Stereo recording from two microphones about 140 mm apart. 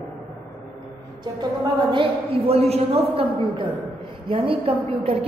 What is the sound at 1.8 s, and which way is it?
A woman's voice, 35° right (ahead or behind).